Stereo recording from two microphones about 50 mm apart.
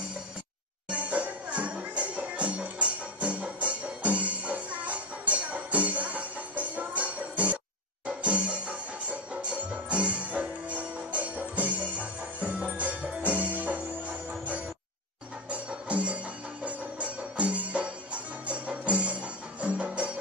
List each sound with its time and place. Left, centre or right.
0.8 s music: right
16.6 s music: right